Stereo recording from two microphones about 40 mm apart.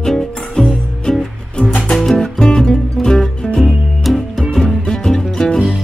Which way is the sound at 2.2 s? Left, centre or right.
Centre.